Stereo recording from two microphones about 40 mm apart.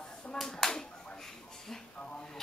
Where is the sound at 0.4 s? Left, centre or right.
Centre.